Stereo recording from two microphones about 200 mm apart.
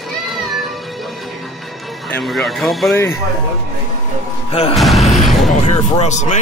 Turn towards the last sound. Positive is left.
turn(degrees=35)  # may be behind; listen again after turning